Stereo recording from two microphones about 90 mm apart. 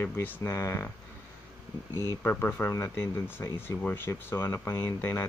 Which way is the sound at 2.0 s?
20° left (ahead or behind).